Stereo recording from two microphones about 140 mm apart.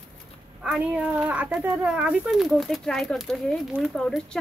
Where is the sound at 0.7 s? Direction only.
10° right (ahead or behind).